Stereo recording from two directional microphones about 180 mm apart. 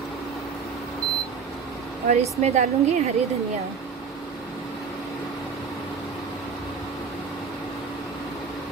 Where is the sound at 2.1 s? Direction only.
40° right (ahead or behind).